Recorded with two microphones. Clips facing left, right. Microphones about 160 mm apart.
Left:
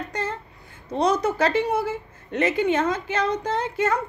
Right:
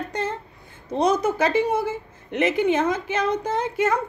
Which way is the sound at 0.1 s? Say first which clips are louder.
Right 2 dB; 20° right (ahead or behind).